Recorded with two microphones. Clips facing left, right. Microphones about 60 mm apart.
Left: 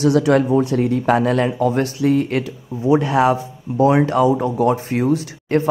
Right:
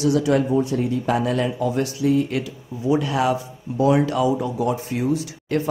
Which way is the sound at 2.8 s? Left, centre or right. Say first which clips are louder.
Left 5 dB; left.